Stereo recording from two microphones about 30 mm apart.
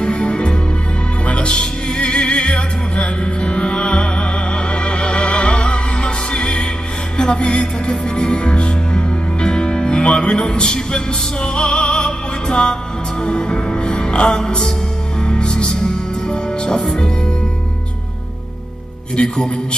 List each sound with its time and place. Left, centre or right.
0.0 s music: left
1.2 s opera: left
3.3 s music: left
19.1 s speech: left